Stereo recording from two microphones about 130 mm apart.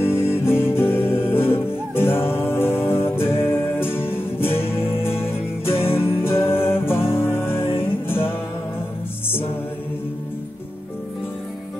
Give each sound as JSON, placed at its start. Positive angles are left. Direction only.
{"t": 0.0, "sound": "music", "side_deg": 20}